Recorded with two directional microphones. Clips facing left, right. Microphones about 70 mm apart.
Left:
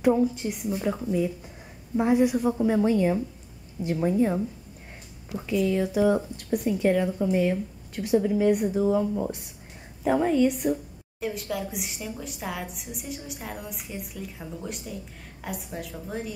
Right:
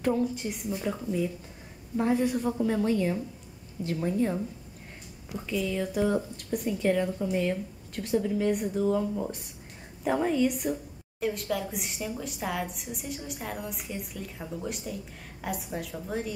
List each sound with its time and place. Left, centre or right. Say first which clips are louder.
0.2 s a woman's voice: left 4 dB; centre
5.5 s a woman's voice: left 5 dB; centre